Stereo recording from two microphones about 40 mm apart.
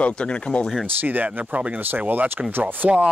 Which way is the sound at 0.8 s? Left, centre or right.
Right.